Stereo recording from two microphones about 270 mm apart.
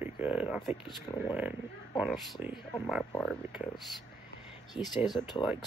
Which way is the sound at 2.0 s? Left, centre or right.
Centre.